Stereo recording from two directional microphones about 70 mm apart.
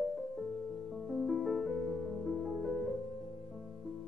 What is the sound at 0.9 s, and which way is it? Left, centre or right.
Music, centre.